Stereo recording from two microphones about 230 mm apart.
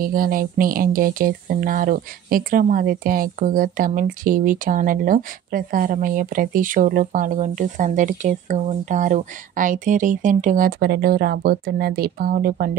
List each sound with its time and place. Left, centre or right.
0.0 s speech: right